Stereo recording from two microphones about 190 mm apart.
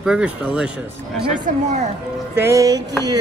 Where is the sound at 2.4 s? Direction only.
20° right (ahead or behind).